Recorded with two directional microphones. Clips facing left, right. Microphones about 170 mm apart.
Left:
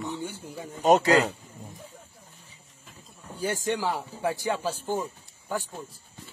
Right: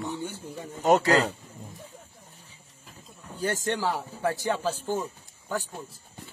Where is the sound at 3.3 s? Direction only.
10° left (ahead or behind).